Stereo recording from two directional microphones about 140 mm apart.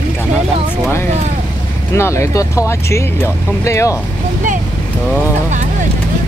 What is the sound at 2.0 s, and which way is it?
Speech, 20° left (ahead or behind).